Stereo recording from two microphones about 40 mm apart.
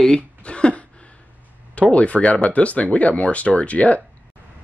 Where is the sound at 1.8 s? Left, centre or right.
Left.